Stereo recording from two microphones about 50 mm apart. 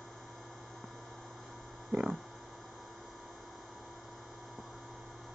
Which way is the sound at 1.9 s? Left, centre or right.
Right.